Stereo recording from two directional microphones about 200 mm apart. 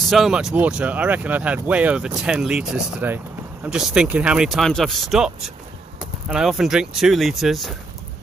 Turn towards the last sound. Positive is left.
turn(degrees=0)  # may be behind; listen again after turning